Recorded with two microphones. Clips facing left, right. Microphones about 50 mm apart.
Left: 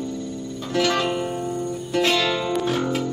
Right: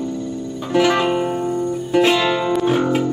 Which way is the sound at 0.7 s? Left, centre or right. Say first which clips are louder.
Right 6 dB; centre.